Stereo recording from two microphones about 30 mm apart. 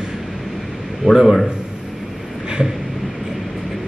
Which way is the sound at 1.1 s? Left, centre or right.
Right.